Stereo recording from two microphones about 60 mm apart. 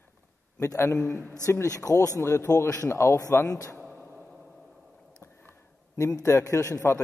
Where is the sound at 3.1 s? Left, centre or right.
Left.